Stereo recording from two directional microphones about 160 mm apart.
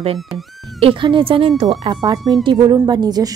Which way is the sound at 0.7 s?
35° right (ahead or behind).